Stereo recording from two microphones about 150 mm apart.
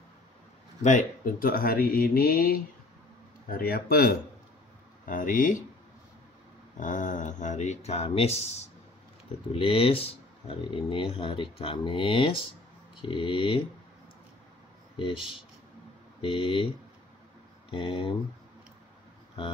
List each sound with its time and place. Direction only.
0.8 s speech: 60° left (ahead or behind); by 4.2 s 90° left
5.0 s speech: 65° left (ahead or behind)
6.8 s speech: 60° left (ahead or behind); by 13.6 s 35° left (ahead or behind)
16.2 s speech: 35° left (ahead or behind)
17.6 s speech: 35° left (ahead or behind)